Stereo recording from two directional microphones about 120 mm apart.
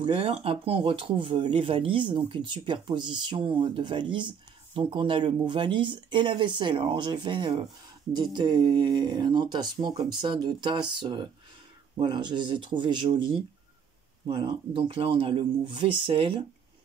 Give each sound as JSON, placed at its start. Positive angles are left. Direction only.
{"t": 0.0, "sound": "speech", "side_deg": -50}